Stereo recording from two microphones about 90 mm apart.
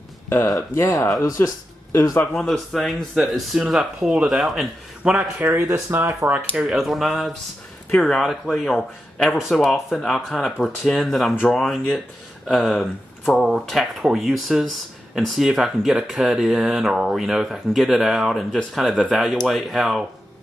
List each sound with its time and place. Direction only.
0.8 s speech: 40° left (ahead or behind)
2.3 s speech: centre (ahead or behind)
5.1 s speech: 20° right (ahead or behind)
6.5 s speech: 10° right (ahead or behind)